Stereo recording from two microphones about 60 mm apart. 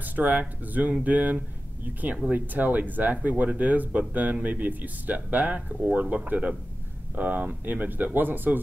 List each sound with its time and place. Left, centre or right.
0.0 s speech: right